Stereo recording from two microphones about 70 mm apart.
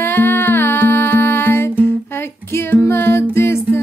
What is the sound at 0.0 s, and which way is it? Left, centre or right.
Music, left.